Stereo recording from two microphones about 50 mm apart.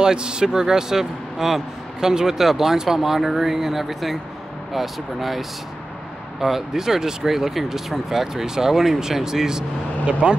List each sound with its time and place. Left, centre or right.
0.0 s speech: centre
6.4 s speech: centre